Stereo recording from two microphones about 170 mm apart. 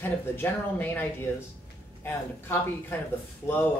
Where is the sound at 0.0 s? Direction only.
10° left (ahead or behind).